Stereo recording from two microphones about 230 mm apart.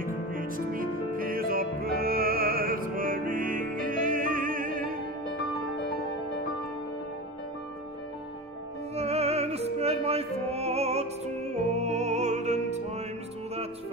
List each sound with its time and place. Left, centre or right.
0.0 s music: right
8.9 s music: right